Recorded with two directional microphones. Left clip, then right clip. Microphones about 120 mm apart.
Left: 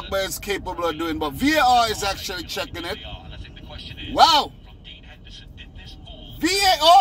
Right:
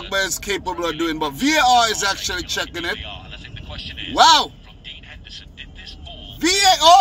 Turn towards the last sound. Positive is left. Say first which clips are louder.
# right 3 dB
turn(degrees=-10)  # may be behind; listen again after turning